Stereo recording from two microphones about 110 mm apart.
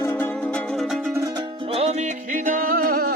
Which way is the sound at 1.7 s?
65° right (ahead or behind).